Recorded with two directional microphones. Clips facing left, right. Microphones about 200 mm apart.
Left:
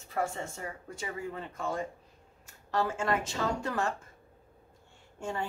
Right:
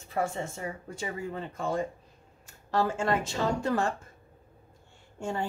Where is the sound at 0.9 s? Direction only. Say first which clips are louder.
Right 1 dB; 30° right (ahead or behind).